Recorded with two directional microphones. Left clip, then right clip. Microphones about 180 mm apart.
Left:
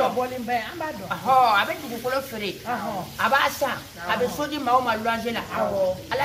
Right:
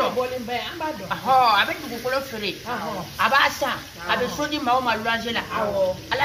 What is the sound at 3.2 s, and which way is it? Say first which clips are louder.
Speech: right 2 dB; 20° left (ahead or behind).